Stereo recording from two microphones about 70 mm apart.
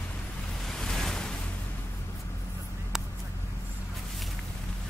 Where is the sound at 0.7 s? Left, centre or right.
Centre.